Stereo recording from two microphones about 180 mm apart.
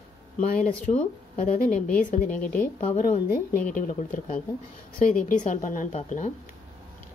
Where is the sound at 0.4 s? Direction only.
45° left (ahead or behind).